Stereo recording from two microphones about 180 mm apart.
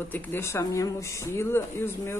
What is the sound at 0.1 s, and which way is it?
Speech, 10° left (ahead or behind).